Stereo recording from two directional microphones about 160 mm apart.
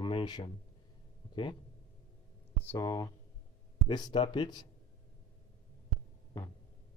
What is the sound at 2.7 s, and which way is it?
Speech, 25° left (ahead or behind).